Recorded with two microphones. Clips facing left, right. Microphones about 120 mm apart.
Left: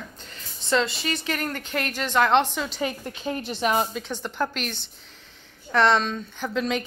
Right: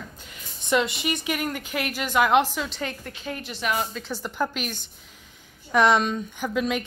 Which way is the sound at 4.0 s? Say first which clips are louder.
Even; 5° right (ahead or behind).